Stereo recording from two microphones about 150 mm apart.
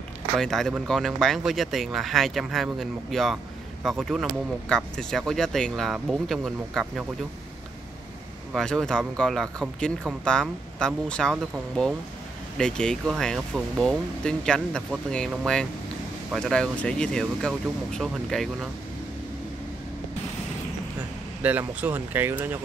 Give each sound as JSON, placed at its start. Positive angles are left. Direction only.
{"t": 0.4, "sound": "speech", "side_deg": 5}
{"t": 8.5, "sound": "speech", "side_deg": 5}
{"t": 21.4, "sound": "speech", "side_deg": -10}